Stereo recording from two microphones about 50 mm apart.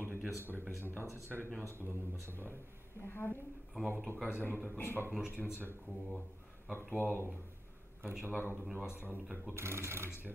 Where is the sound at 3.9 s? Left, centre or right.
Right.